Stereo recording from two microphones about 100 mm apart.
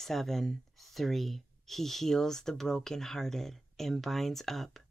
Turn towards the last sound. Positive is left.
turn(degrees=0)  # may be behind; listen again after turning